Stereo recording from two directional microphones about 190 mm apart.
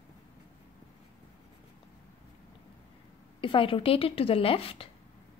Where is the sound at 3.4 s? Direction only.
25° left (ahead or behind).